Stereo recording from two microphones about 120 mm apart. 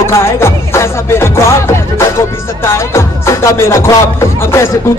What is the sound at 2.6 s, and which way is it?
Music, 20° left (ahead or behind).